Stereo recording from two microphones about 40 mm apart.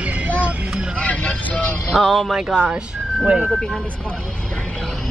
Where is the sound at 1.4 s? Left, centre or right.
Left.